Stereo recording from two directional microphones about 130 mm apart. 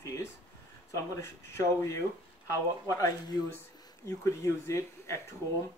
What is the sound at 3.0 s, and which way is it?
Speech, 30° left (ahead or behind).